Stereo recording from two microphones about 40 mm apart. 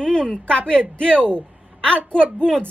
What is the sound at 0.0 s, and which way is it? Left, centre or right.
A woman's voice, left.